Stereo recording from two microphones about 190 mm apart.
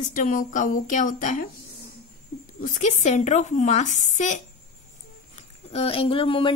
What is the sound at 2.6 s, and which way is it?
A woman's voice, 40° left (ahead or behind).